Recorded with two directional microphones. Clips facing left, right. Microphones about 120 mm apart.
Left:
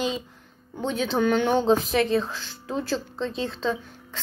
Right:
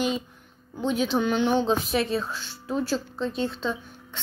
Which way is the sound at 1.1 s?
50° left (ahead or behind).